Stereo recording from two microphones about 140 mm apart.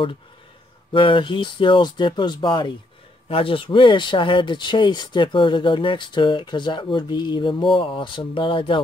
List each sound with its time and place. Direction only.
0.9 s speech: 35° left (ahead or behind)